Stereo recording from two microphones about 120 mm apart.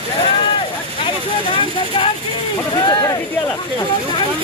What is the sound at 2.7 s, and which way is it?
Speech, 40° left (ahead or behind).